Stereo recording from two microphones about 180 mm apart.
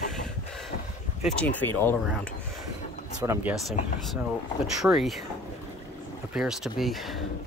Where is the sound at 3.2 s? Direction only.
15° right (ahead or behind).